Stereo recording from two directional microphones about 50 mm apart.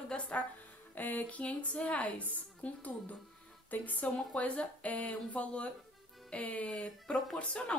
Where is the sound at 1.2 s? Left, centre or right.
Left.